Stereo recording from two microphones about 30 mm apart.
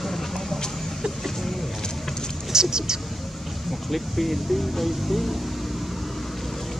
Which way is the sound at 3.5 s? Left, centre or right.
Centre.